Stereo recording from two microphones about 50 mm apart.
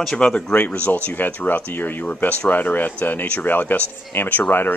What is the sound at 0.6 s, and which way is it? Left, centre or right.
Speech, left.